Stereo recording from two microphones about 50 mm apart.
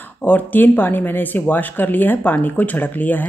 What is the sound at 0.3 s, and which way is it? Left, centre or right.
A woman's voice, left.